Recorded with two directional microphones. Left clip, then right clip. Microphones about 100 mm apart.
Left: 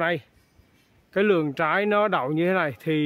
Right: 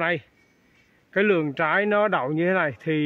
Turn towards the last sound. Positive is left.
turn(degrees=20)  # may be behind; listen again after turning